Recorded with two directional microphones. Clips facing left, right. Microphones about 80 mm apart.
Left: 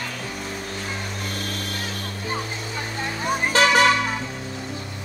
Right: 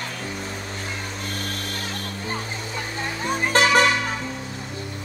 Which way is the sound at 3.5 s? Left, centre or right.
Right.